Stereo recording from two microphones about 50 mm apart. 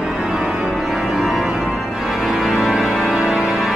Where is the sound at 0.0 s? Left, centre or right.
Centre.